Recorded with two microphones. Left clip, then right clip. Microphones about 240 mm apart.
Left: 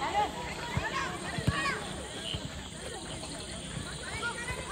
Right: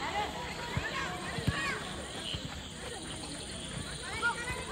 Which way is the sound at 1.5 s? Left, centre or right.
Centre.